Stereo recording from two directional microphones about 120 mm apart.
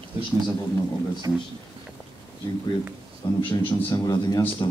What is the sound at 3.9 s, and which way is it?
Speech, 25° left (ahead or behind).